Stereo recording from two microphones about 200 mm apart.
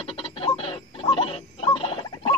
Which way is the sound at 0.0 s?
30° left (ahead or behind).